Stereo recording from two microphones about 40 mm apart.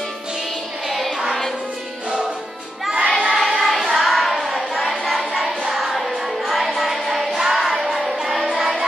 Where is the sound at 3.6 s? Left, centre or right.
Centre.